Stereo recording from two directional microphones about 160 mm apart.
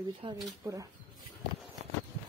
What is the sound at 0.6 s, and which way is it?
Speech, 20° right (ahead or behind).